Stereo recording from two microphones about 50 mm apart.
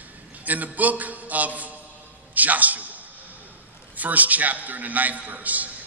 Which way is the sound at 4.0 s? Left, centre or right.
Right.